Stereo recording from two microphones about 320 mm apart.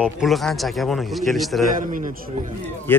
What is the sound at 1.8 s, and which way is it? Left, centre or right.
Speech, right.